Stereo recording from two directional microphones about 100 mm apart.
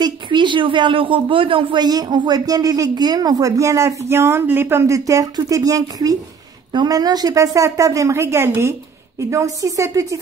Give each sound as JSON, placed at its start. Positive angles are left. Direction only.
{"t": 0.0, "sound": "speech", "side_deg": -50}